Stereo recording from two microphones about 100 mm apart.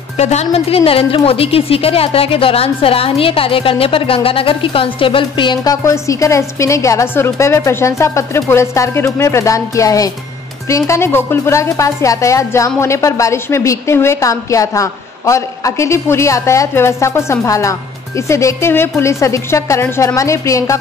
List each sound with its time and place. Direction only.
0.2 s a woman's voice: 90° left; by 20.7 s 35° left (ahead or behind)